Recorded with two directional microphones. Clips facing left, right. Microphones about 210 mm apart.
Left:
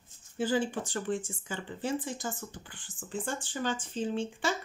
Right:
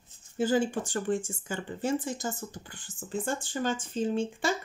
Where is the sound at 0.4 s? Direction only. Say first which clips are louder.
Right 3 dB; 45° right (ahead or behind).